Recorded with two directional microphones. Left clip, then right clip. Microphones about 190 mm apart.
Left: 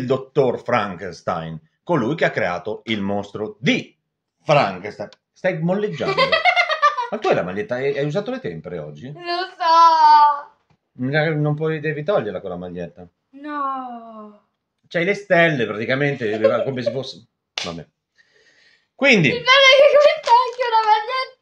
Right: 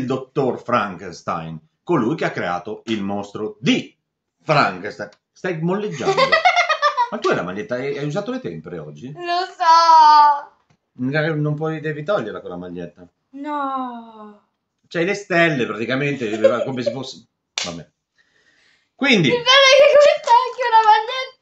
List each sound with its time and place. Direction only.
0.1 s speech: 35° left (ahead or behind)
4.8 s speech: 25° left (ahead or behind)
6.0 s a sound: 25° right (ahead or behind)
7.1 s speech: 35° left (ahead or behind)
9.1 s child singing: 25° right (ahead or behind)
11.0 s speech: 35° left (ahead or behind)
13.4 s speech: 20° right (ahead or behind)
14.9 s speech: 35° left (ahead or behind)
18.1 s a sound: 35° left (ahead or behind)
18.9 s speech: 30° left (ahead or behind)
19.3 s child singing: 25° right (ahead or behind)